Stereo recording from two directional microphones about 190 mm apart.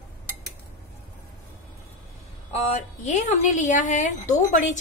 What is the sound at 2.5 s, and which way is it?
A woman's voice, 35° left (ahead or behind).